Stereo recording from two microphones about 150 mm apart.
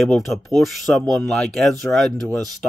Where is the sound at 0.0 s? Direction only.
Centre (ahead or behind).